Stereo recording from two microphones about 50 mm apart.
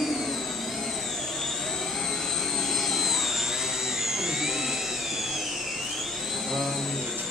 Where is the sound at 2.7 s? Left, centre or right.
Centre.